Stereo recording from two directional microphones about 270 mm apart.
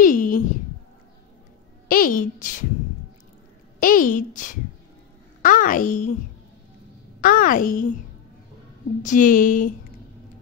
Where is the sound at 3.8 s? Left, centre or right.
Left.